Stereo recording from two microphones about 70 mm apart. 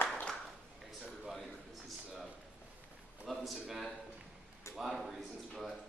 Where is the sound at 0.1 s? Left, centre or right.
Centre.